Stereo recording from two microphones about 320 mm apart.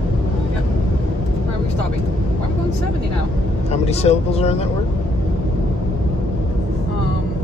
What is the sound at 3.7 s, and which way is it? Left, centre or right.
Speech, centre.